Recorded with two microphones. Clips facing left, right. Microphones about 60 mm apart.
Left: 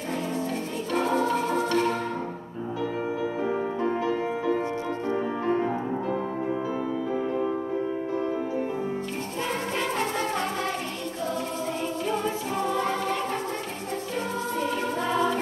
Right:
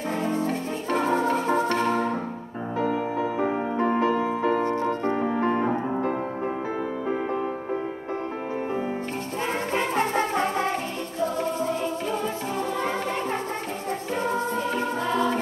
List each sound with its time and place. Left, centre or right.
0.1 s music: right
2.8 s music: right
9.7 s music: right
12.8 s music: right
14.5 s music: centre